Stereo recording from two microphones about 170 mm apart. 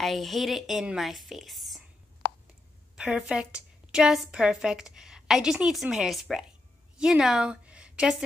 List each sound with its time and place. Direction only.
0.0 s a woman's voice: centre (ahead or behind)
2.2 s a sound: 70° left (ahead or behind)
3.0 s a woman's voice: 5° right (ahead or behind)